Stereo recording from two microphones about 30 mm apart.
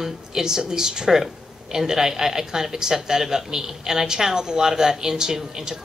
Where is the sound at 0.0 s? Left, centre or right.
Centre.